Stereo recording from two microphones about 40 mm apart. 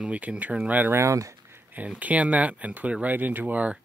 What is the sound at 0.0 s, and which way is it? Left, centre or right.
Speech, right.